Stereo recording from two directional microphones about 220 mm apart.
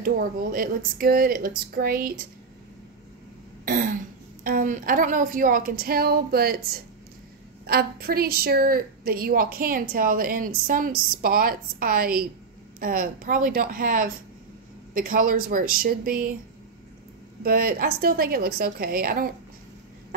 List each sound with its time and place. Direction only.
0.0 s a woman's voice: 40° right (ahead or behind)
4.4 s a woman's voice: 40° right (ahead or behind)
17.4 s a woman's voice: 40° right (ahead or behind)